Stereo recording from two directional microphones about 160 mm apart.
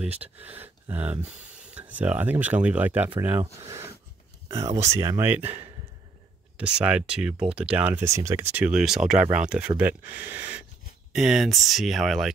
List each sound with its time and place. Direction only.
0.2 s speech: 10° right (ahead or behind)
4.9 s speech: 15° right (ahead or behind); by 12.3 s centre (ahead or behind)